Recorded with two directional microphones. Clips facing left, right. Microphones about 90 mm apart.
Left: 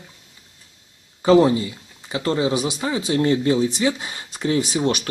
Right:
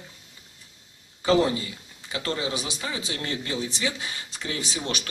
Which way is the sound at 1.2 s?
30° left (ahead or behind).